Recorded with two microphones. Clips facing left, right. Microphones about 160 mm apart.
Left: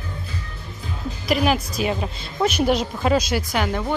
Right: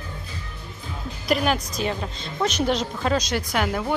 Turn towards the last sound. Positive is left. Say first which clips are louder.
# left 1 dB
turn(degrees=-5)  # may be behind; listen again after turning